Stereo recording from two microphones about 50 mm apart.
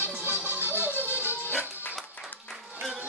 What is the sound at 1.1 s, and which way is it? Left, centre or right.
Music, right.